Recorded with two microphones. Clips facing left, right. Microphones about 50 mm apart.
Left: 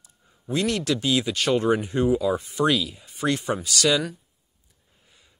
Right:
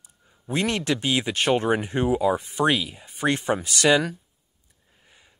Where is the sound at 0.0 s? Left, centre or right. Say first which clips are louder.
Left 2 dB; right.